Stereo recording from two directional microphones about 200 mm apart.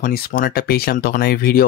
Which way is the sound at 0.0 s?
45° left (ahead or behind).